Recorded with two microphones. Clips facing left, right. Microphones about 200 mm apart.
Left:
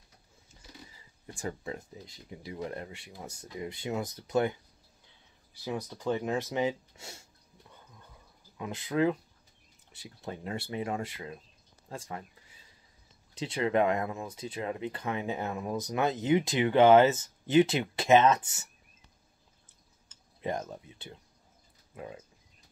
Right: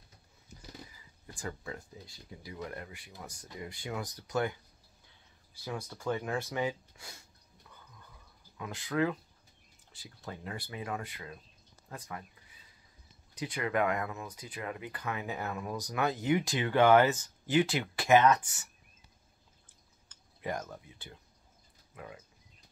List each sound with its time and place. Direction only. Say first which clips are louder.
0.9 s speech: left 4 dB; 25° left (ahead or behind)
5.6 s speech: left 4 dB; 20° left (ahead or behind)
8.5 s speech: left 3 dB; 20° left (ahead or behind)
13.3 s speech: left 5 dB; 25° left (ahead or behind)
20.1 s speech: left 3 dB; 25° left (ahead or behind)